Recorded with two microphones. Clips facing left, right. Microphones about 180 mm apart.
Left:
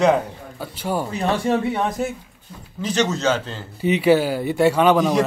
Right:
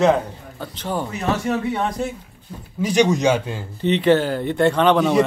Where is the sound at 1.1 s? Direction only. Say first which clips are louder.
Left 2 dB; 30° left (ahead or behind).